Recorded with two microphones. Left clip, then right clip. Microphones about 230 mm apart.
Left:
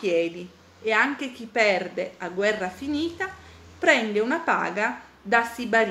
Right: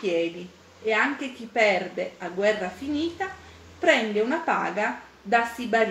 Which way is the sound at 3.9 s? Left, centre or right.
Centre.